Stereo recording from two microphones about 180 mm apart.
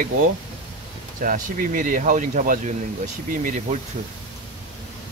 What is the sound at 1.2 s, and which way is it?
Speech, 50° right (ahead or behind).